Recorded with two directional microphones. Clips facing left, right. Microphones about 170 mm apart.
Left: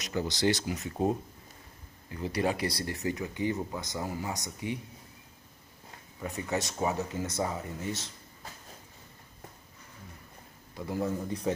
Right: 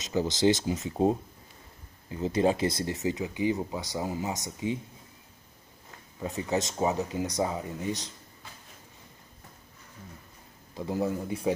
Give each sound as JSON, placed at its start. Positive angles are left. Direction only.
{"t": 0.0, "sound": "speech", "side_deg": -20}
{"t": 6.2, "sound": "speech", "side_deg": -20}
{"t": 10.9, "sound": "speech", "side_deg": -15}